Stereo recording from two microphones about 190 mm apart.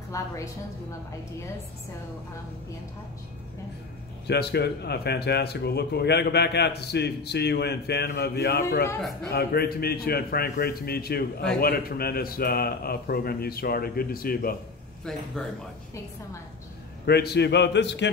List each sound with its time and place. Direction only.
0.1 s a woman's voice: 15° left (ahead or behind)
4.3 s a man's voice: 60° left (ahead or behind)
17.0 s speech: 60° left (ahead or behind)